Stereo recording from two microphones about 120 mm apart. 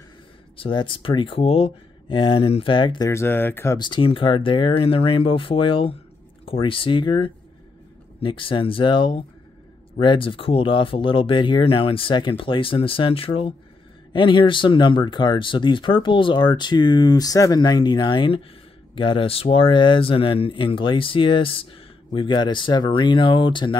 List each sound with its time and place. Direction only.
0.6 s speech: 45° left (ahead or behind)
3.1 s speech: 20° left (ahead or behind)
3.7 s speech: 40° left (ahead or behind)